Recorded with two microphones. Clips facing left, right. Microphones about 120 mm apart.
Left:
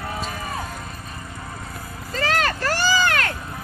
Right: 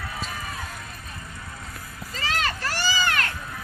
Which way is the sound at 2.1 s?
60° left (ahead or behind).